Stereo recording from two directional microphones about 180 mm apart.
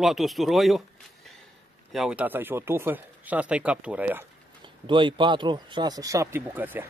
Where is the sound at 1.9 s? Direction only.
5° right (ahead or behind).